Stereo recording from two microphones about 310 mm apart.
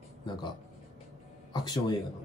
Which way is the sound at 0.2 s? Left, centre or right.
Centre.